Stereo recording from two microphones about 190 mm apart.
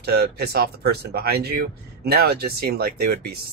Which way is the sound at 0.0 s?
60° right (ahead or behind).